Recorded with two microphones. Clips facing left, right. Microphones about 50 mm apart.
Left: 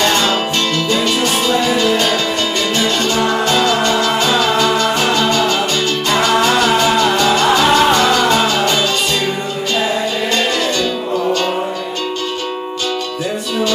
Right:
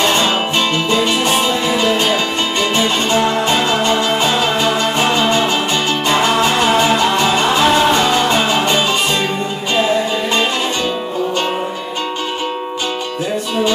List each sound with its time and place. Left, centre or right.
0.0 s music: right